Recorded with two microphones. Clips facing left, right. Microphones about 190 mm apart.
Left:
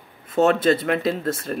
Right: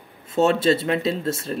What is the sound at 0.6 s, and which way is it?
Speech, 25° right (ahead or behind).